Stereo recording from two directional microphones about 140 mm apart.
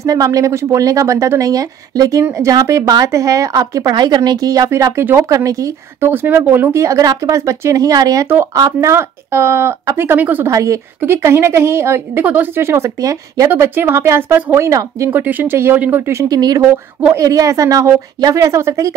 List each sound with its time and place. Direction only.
0.0 s speech: 25° right (ahead or behind)